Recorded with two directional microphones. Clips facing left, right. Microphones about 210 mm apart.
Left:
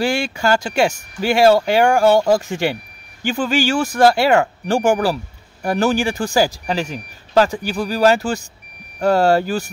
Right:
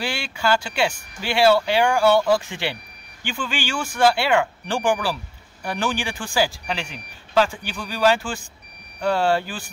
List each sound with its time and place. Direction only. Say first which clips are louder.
0.0 s speech: left 7 dB; 45° left (ahead or behind)